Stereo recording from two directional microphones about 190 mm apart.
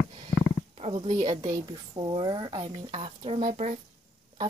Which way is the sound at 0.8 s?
35° right (ahead or behind).